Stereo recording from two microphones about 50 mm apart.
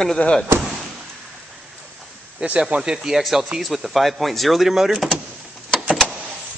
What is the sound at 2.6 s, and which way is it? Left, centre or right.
A man's voice, centre.